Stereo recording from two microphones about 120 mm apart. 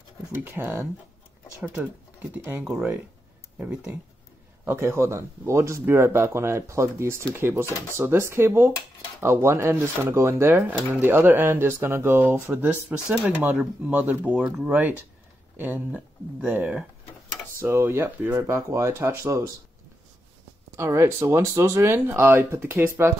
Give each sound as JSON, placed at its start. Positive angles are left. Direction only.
{"t": 0.3, "sound": "speech", "side_deg": -20}
{"t": 2.3, "sound": "speech", "side_deg": -15}
{"t": 4.6, "sound": "speech", "side_deg": -20}
{"t": 20.7, "sound": "speech", "side_deg": -25}